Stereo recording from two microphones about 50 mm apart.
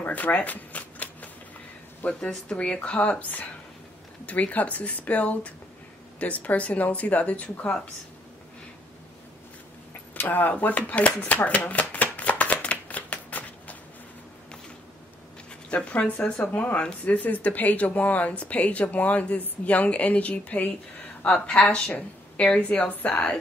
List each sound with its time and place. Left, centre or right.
0.0 s shuffling cards: left
2.0 s speech: left
10.1 s speech: left
11.9 s shuffling cards: left
15.7 s speech: left
21.9 s speech: left